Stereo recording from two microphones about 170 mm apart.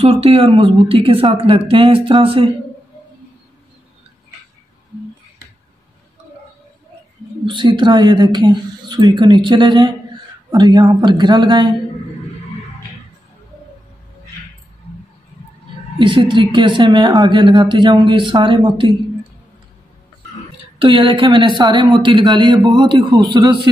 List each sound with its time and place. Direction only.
0.0 s speech: 35° right (ahead or behind)
7.4 s speech: 30° right (ahead or behind)
16.0 s speech: 30° right (ahead or behind)
20.8 s speech: 30° right (ahead or behind)